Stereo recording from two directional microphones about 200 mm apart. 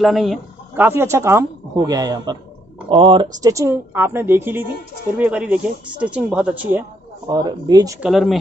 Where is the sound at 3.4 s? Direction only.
15° right (ahead or behind).